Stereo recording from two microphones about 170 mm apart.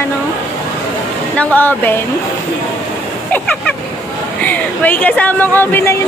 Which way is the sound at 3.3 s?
5° left (ahead or behind).